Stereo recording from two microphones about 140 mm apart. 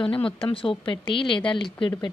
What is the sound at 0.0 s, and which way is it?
Speech, 40° left (ahead or behind).